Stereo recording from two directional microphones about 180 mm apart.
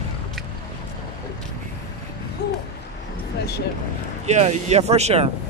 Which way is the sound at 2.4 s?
70° left (ahead or behind).